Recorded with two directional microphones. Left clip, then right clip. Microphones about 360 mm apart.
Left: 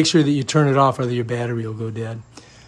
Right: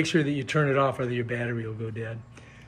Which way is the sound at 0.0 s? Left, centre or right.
Centre.